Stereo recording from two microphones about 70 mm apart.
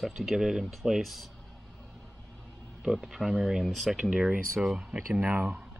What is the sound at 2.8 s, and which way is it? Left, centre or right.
Speech, centre.